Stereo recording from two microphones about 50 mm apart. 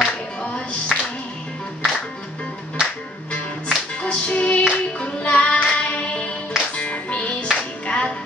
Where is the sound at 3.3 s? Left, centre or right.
Left.